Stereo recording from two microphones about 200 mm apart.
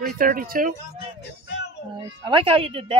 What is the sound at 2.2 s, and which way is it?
Speech, 25° right (ahead or behind).